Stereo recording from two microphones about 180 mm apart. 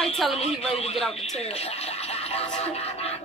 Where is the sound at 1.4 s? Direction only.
35° left (ahead or behind).